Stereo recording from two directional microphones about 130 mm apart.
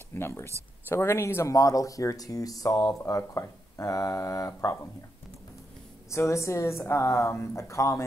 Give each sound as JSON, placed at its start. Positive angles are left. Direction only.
{"t": 0.1, "sound": "speech", "side_deg": 15}
{"t": 6.0, "sound": "speech", "side_deg": 20}